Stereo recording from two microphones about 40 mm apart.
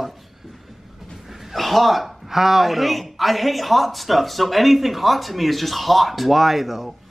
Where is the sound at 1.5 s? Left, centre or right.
Centre.